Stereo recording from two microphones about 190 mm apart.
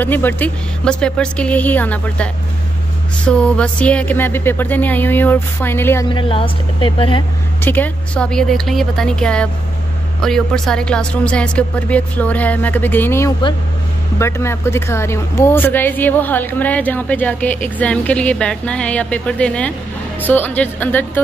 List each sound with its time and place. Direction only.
0.0 s speech: 10° left (ahead or behind)
3.3 s speech: 5° left (ahead or behind)
6.0 s speech: 25° left (ahead or behind)
7.6 s speech: 10° left (ahead or behind)